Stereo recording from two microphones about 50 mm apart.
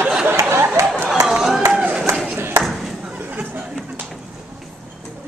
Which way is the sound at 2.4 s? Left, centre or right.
Right.